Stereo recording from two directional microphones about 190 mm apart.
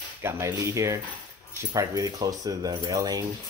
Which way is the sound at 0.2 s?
15° right (ahead or behind).